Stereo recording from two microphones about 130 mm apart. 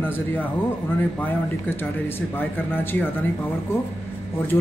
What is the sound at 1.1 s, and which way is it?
Speech, 15° left (ahead or behind).